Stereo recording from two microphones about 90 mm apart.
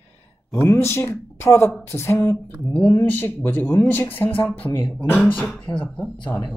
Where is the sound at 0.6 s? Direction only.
30° left (ahead or behind).